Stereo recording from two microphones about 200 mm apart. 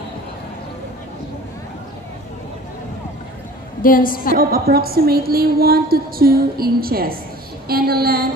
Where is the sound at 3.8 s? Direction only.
45° left (ahead or behind).